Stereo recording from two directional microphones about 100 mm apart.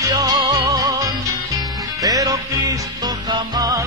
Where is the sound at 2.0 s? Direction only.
35° right (ahead or behind).